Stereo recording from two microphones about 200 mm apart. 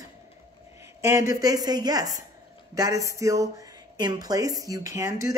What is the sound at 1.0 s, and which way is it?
A man's voice, 15° right (ahead or behind).